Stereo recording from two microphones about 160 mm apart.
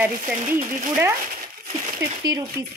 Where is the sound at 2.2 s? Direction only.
25° right (ahead or behind).